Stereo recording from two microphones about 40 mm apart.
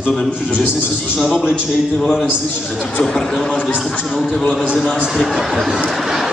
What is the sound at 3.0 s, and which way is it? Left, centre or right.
Speech, centre.